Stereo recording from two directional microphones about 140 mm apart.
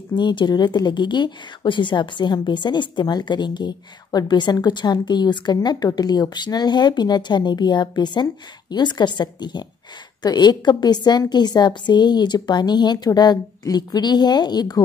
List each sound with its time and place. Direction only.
0.1 s speech: 35° left (ahead or behind)